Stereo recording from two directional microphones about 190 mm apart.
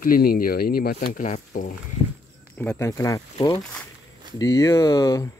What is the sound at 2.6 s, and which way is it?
Speech, 10° left (ahead or behind).